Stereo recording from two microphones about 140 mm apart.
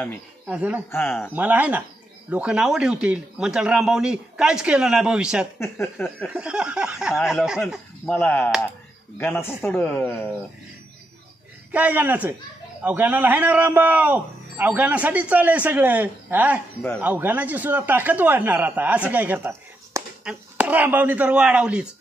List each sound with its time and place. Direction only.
0.5 s speech: 10° right (ahead or behind)
0.9 s speech: 15° left (ahead or behind)
1.3 s a man's voice: 10° right (ahead or behind)
5.6 s speech: 15° left (ahead or behind)
6.2 s a man's voice: 5° right (ahead or behind)
8.1 s speech: 15° left (ahead or behind)
11.7 s speech: 10° right (ahead or behind)